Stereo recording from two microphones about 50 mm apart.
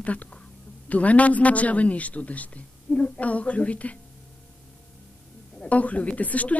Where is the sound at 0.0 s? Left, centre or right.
Left.